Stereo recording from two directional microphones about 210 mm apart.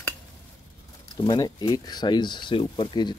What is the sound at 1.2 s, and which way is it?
Speech, 20° left (ahead or behind).